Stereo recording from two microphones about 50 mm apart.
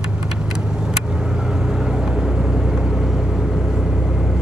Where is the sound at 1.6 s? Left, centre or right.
Centre.